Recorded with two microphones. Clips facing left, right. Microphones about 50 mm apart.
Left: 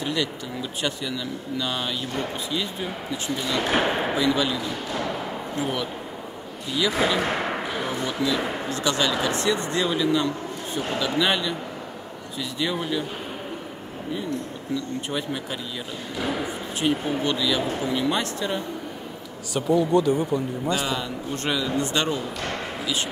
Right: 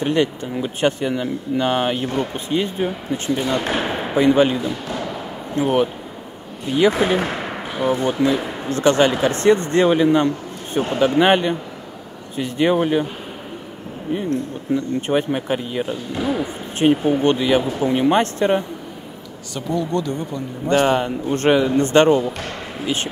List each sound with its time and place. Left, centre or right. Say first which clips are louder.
0.0 s speech: right 8 dB; right
3.7 s speech: even; centre
4.1 s a man's voice: right 8 dB; right
14.7 s speech: right 9 dB; right
19.5 s speech: left 2 dB; centre
20.6 s a man's voice: right 9 dB; right